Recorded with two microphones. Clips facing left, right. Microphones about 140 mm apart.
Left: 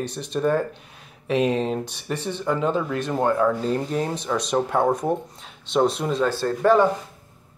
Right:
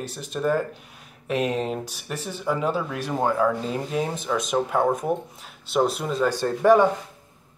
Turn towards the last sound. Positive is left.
turn(degrees=-15)  # may be behind; listen again after turning